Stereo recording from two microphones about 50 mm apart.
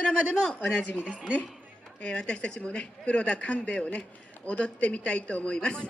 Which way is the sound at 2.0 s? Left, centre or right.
Left.